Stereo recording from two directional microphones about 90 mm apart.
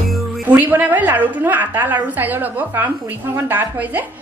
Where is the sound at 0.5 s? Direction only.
20° right (ahead or behind).